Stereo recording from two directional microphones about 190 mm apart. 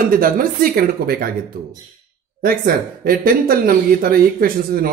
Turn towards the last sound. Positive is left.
turn(degrees=-50)  # may be behind; listen again after turning